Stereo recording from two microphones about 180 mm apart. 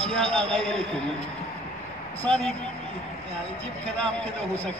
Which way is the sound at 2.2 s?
5° left (ahead or behind).